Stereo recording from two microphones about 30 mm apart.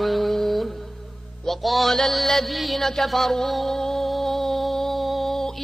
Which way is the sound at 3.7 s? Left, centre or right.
Centre.